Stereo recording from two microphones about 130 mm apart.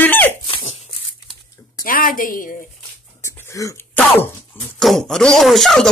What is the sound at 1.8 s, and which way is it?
Speech, 90° left.